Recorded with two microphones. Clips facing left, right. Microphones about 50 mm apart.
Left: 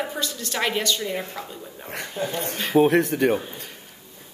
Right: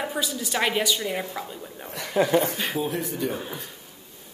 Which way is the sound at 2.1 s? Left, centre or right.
Right.